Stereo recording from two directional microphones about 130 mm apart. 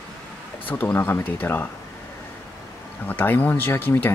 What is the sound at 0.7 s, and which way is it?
Speech, 15° left (ahead or behind).